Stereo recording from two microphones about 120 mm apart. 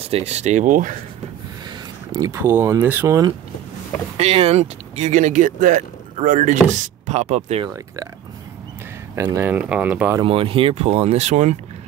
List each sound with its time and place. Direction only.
0.0 s speech: 60° right (ahead or behind); by 0.9 s 90° right
2.1 s speech: 25° right (ahead or behind)
4.2 s speech: 60° right (ahead or behind)
7.7 s speech: 30° right (ahead or behind)
9.1 s speech: 20° right (ahead or behind)
10.2 s speech: 50° right (ahead or behind); by 11.5 s 75° right (ahead or behind)